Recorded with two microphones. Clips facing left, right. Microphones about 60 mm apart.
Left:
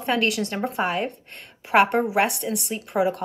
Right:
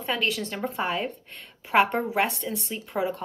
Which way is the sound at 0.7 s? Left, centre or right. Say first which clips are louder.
Left 3 dB; centre.